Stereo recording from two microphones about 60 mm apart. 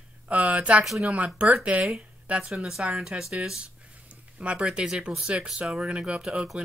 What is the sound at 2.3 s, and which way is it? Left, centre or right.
Speech, right.